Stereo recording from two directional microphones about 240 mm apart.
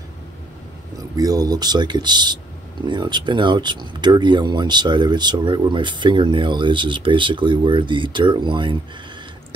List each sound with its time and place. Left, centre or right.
1.1 s speech: centre